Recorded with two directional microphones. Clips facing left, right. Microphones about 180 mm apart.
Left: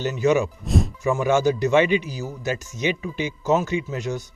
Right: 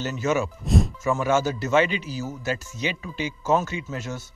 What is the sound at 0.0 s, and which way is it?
Speech, 15° left (ahead or behind).